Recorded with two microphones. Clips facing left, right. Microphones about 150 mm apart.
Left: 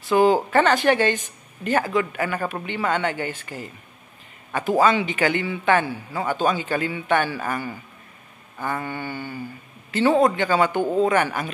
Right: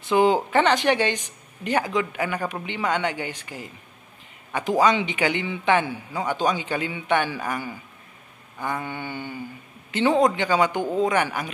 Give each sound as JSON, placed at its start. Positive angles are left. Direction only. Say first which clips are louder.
{"t": 0.0, "sound": "speech", "louder": "left 2 dB", "side_deg": -20}